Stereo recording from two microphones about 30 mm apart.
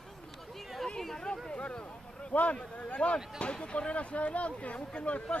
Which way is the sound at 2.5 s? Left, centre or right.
Left.